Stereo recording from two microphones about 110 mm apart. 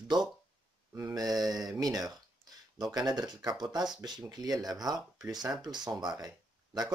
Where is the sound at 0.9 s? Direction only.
30° right (ahead or behind).